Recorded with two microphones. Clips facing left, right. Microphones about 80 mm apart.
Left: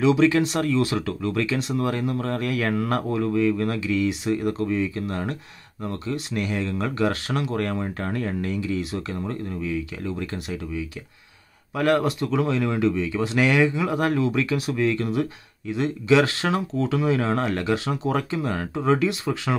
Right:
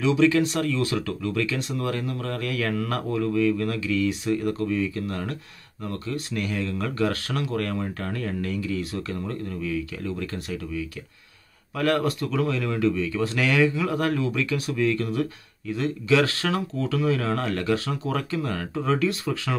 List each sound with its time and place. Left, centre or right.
0.0 s speech: left